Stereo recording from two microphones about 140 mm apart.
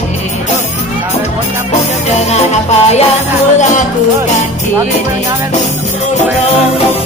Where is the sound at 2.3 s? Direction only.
50° left (ahead or behind).